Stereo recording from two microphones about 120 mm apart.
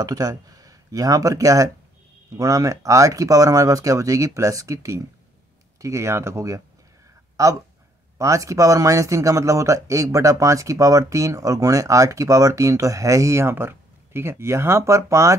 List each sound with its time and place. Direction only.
0.0 s speech: 30° right (ahead or behind)